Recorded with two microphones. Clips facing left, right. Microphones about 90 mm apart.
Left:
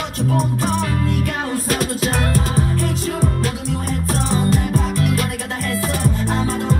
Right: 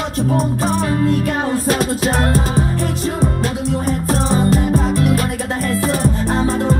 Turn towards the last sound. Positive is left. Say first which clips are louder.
# right 4 dB
turn(degrees=-35)  # may be behind; listen again after turning